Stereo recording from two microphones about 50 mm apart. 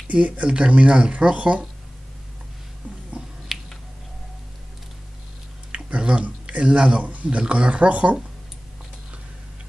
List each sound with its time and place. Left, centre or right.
0.1 s speech: right
3.5 s finger snapping: centre
5.7 s a sound: right
6.6 s speech: centre